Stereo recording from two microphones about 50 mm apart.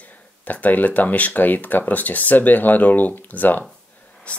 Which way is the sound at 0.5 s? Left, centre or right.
Left.